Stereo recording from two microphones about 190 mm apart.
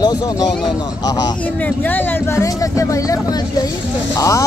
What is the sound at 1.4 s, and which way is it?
Speech, 10° left (ahead or behind).